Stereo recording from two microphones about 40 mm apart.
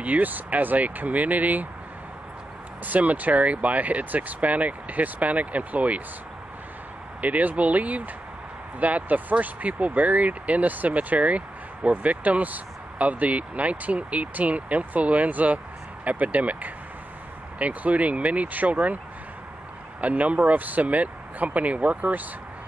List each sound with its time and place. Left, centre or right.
0.0 s speech: right
2.8 s speech: right
7.2 s speech: right
20.0 s speech: right